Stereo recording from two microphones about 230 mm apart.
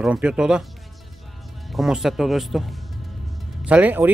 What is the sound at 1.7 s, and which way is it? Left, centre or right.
Speech, centre.